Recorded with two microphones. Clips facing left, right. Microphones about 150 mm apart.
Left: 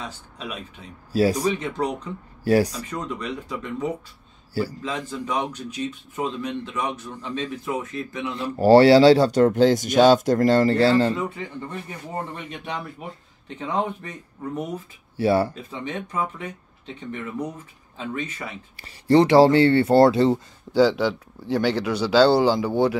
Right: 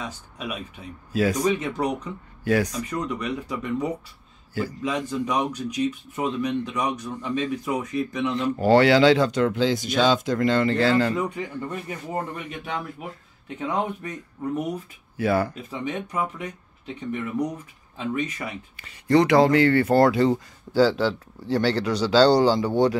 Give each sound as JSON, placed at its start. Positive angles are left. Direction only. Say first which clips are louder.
{"t": 0.0, "sound": "speech", "louder": "right 1 dB", "side_deg": -10}
{"t": 1.1, "sound": "speech", "louder": "left 2 dB", "side_deg": 35}
{"t": 1.6, "sound": "speech", "louder": "even", "side_deg": -10}
{"t": 2.4, "sound": "speech", "louder": "left 3 dB", "side_deg": 35}
{"t": 2.9, "sound": "speech", "louder": "right 2 dB", "side_deg": -10}
{"t": 8.4, "sound": "speech", "louder": "left 4 dB", "side_deg": 35}
{"t": 11.1, "sound": "speech", "louder": "right 2 dB", "side_deg": -15}
{"t": 12.4, "sound": "a man's voice", "louder": "right 1 dB", "side_deg": 0}
{"t": 15.1, "sound": "speech", "louder": "left 3 dB", "side_deg": 30}
{"t": 15.7, "sound": "speech", "louder": "right 1 dB", "side_deg": -10}
{"t": 18.1, "sound": "speech", "louder": "right 3 dB", "side_deg": -15}
{"t": 18.8, "sound": "speech", "louder": "left 2 dB", "side_deg": 35}
{"t": 20.7, "sound": "speech", "louder": "left 1 dB", "side_deg": 15}